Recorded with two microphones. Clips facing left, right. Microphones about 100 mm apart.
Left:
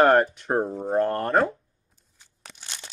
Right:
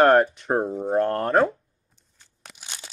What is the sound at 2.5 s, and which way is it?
Crunch, 10° right (ahead or behind).